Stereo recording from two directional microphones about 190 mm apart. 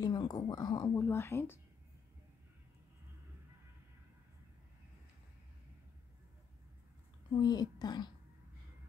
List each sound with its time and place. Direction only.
0.0 s speech: 20° left (ahead or behind)
7.3 s speech: 20° left (ahead or behind)